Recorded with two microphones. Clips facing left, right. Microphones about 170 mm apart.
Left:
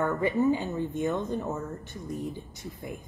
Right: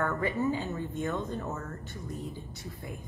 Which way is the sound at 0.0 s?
15° left (ahead or behind).